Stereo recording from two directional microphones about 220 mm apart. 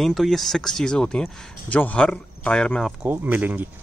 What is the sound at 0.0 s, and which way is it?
A man's voice, centre (ahead or behind).